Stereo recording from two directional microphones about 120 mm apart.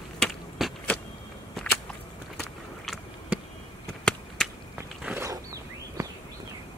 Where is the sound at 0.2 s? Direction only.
Centre (ahead or behind).